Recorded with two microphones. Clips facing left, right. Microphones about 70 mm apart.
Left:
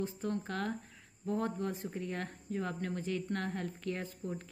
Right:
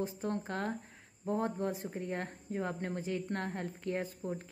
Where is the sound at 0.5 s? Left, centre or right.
Right.